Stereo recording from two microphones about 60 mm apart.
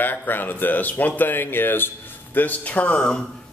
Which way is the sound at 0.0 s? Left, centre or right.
Left.